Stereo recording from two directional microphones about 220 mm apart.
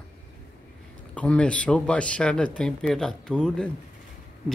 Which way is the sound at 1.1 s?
5° left (ahead or behind).